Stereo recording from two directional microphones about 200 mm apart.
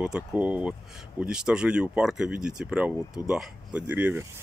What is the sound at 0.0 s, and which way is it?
Speech, 5° right (ahead or behind).